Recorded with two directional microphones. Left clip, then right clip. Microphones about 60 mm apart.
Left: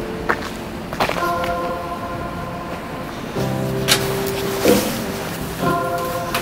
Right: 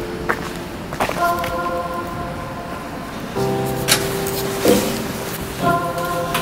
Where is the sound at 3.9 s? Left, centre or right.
Centre.